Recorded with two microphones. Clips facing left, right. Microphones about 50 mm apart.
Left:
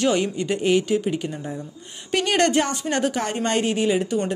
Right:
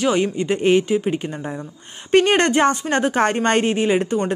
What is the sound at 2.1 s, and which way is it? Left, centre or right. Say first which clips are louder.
A woman's voice: right 4 dB; right.